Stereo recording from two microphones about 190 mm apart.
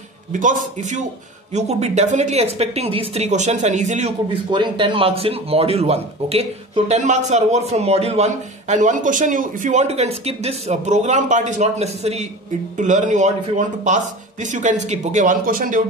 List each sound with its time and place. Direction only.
0.3 s speech: 40° right (ahead or behind)
4.5 s speech: 25° right (ahead or behind)
14.4 s speech: 40° right (ahead or behind)